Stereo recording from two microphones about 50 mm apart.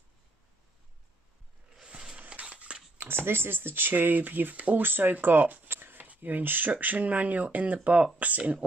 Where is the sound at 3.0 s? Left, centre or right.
Right.